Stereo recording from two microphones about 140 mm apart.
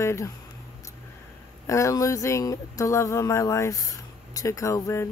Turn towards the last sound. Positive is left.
turn(degrees=20)  # may be behind; listen again after turning